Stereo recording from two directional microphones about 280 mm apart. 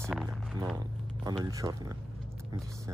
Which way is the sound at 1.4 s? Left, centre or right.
Centre.